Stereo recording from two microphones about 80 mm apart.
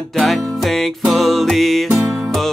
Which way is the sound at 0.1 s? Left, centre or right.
Centre.